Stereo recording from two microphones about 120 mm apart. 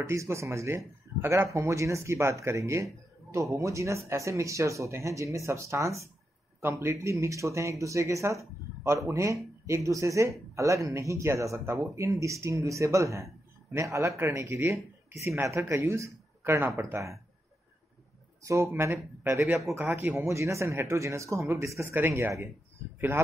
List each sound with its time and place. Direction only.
0.0 s speech: 25° right (ahead or behind)
18.4 s speech: 25° right (ahead or behind)